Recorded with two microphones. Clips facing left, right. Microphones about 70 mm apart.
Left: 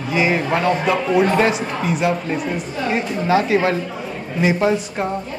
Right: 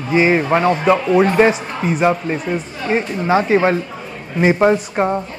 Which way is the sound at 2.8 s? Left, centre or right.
Right.